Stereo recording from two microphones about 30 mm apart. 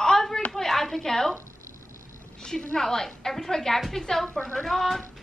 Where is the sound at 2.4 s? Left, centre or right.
Left.